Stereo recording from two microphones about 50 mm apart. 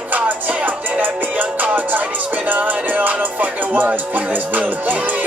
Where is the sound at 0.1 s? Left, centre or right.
Right.